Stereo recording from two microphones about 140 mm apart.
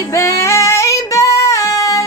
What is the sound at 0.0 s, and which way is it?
Female singing, 20° left (ahead or behind).